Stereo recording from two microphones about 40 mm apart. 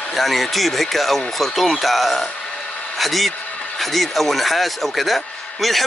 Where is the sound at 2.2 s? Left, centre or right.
Centre.